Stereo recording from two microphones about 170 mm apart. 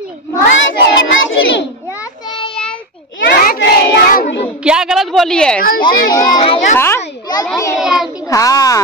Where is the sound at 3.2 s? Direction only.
65° left (ahead or behind).